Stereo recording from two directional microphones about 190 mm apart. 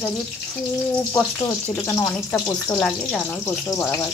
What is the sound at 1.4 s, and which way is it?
Speech, 15° left (ahead or behind).